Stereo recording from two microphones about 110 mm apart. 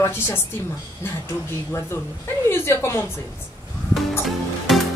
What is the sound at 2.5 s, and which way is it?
Speech, 25° left (ahead or behind).